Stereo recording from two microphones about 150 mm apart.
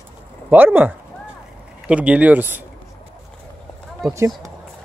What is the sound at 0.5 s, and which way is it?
Speech, 15° right (ahead or behind).